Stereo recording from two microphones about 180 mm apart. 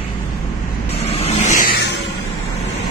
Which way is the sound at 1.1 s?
35° left (ahead or behind).